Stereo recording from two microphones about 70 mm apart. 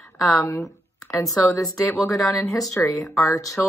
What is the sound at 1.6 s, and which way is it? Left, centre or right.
Speech, centre.